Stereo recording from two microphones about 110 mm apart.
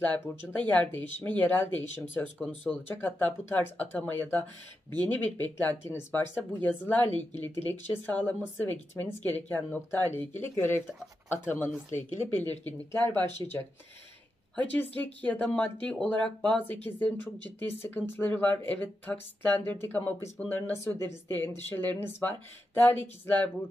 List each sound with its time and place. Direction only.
0.0 s speech: 15° left (ahead or behind)
14.5 s speech: 15° left (ahead or behind)